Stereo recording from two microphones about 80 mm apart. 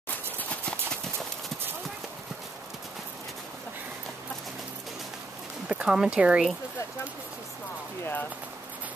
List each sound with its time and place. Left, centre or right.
0.4 s clip-clop: centre
5.7 s speech: centre
8.0 s a sound: left